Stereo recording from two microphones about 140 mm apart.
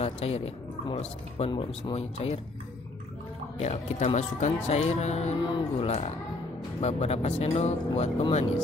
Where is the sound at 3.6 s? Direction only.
50° left (ahead or behind).